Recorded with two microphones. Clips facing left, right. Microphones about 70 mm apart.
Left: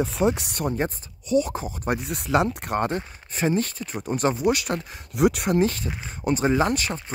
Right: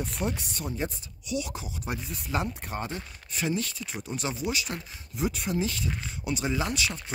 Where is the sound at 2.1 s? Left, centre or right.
Left.